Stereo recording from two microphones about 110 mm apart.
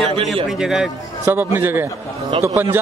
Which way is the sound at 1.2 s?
20° right (ahead or behind).